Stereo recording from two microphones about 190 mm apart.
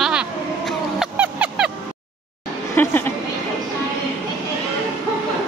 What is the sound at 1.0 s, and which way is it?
Vehicle, 5° right (ahead or behind).